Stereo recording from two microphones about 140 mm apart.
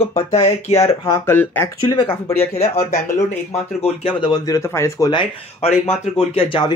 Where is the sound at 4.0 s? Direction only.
30° left (ahead or behind).